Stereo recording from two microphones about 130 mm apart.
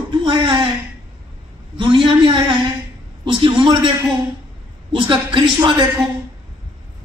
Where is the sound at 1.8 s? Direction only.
40° right (ahead or behind).